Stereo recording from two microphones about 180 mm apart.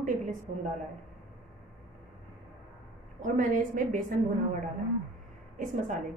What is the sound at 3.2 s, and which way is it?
A woman's voice, 45° right (ahead or behind).